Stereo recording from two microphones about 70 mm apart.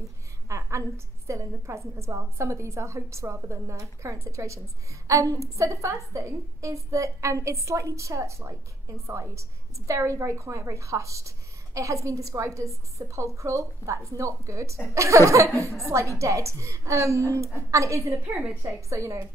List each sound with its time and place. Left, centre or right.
0.5 s a woman's voice: right
18.2 s a woman's voice: centre
18.6 s a woman's voice: right